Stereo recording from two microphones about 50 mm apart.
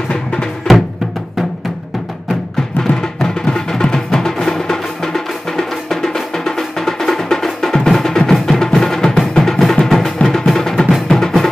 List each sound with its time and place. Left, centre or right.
0.1 s drum: centre
2.8 s music: centre